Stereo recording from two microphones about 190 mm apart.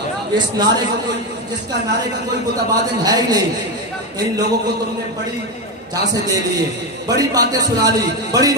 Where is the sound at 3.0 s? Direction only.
20° right (ahead or behind).